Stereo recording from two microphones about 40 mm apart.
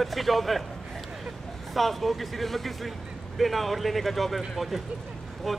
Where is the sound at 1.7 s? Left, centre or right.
Centre.